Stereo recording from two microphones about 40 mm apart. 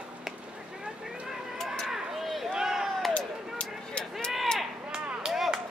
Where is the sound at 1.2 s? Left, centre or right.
Centre.